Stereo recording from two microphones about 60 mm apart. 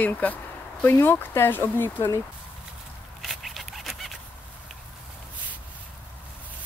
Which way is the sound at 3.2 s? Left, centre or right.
Centre.